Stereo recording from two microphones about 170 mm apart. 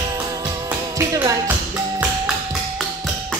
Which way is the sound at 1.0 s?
20° right (ahead or behind).